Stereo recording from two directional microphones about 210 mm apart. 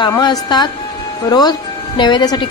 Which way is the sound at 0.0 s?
20° left (ahead or behind).